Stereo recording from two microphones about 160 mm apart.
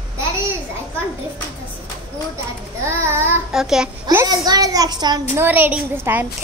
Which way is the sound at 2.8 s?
15° right (ahead or behind).